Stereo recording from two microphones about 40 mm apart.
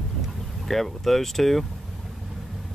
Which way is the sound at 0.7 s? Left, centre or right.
Centre.